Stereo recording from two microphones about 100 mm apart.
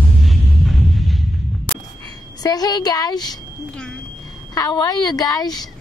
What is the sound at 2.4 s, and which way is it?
Speech, 40° left (ahead or behind).